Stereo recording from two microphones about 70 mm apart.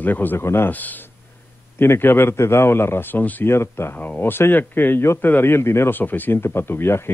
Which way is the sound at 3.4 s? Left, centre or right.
Left.